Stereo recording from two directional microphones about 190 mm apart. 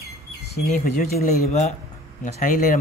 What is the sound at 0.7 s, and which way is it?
Speech, 45° left (ahead or behind).